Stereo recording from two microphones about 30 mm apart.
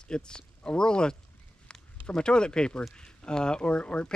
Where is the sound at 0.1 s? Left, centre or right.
Left.